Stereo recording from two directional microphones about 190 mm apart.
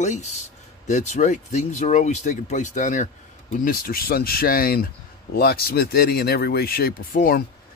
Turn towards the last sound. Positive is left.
turn(degrees=50)  # may be behind; listen again after turning